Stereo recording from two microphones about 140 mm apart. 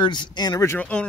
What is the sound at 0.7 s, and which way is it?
Speech, 10° left (ahead or behind).